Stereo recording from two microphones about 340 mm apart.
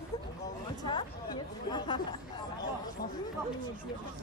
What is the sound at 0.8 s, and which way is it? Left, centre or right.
Speech, centre.